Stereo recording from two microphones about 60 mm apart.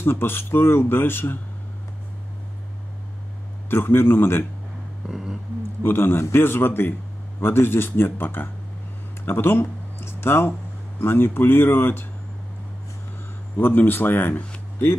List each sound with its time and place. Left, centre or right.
0.0 s speech: left
3.7 s speech: left
5.0 s a sound: centre
5.8 s speech: left
13.6 s speech: left